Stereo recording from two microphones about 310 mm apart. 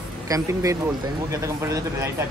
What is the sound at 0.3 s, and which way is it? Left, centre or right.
Speech, centre.